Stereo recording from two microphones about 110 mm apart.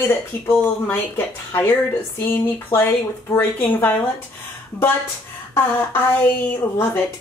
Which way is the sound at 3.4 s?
20° left (ahead or behind).